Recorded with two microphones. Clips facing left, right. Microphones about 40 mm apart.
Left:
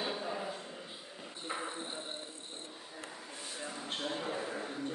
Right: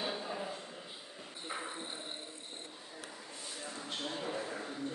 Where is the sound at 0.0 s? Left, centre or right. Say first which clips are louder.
Left 1 dB; centre.